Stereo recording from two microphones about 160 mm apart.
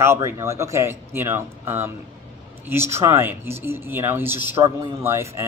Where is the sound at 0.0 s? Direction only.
15° right (ahead or behind).